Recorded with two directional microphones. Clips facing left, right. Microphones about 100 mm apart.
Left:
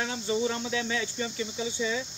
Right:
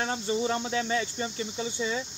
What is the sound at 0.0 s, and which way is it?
Speech, 40° right (ahead or behind).